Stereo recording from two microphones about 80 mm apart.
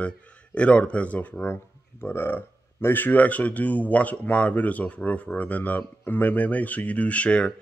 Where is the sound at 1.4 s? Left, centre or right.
Left.